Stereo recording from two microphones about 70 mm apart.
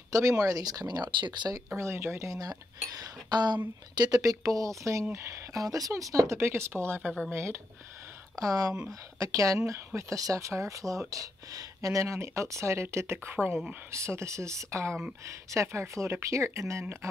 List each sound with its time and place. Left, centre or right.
0.1 s speech: right
1.8 s speech: right
3.0 s speech: right
4.2 s speech: right
6.3 s speech: right
7.0 s speech: centre
7.2 s speech: right
8.4 s speech: right
13.3 s speech: right
13.9 s speech: right